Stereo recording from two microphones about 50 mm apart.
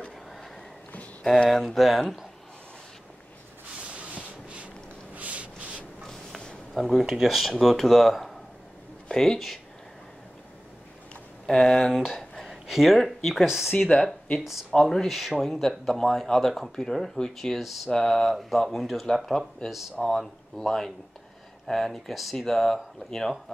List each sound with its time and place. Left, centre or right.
1.5 s speech: centre
3.8 s rub: right
5.1 s a sound: right
6.7 s speech: centre
9.1 s speech: centre
11.4 s speech: centre
12.4 s speech: centre
13.7 s speech: centre
17.9 s speech: centre
19.7 s speech: centre
20.5 s speech: centre